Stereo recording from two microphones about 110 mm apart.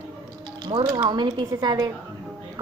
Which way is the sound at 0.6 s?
45° right (ahead or behind).